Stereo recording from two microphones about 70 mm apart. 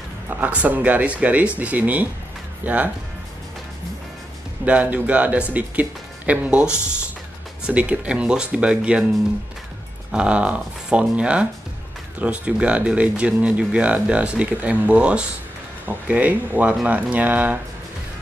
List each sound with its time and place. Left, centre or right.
0.3 s speech: right
4.6 s speech: right
10.1 s speech: centre